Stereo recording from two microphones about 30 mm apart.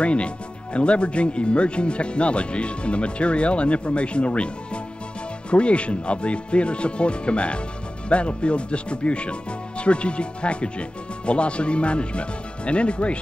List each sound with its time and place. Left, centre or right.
0.0 s speech: left
5.5 s speech: left